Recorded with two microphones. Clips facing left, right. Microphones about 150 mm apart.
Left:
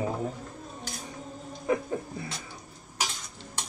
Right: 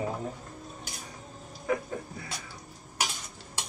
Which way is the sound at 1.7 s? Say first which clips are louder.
Left 2 dB; 25° left (ahead or behind).